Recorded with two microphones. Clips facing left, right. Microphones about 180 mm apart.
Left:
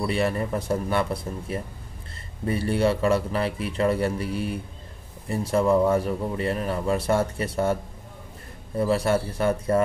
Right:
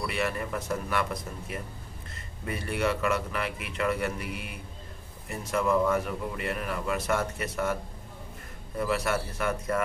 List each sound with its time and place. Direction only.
0.0 s a man's voice: 30° left (ahead or behind)